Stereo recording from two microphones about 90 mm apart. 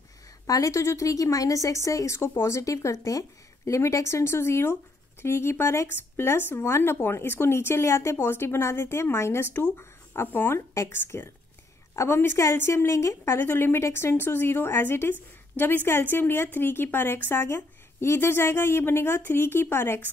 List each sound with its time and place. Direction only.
0.5 s a woman's voice: 40° left (ahead or behind)